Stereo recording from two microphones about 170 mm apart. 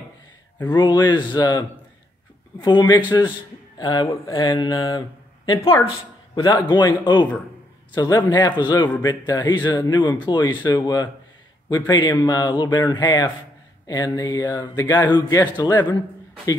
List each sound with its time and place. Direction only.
0.7 s speech: 25° left (ahead or behind)